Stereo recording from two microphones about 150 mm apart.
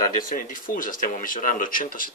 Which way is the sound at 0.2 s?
65° left (ahead or behind).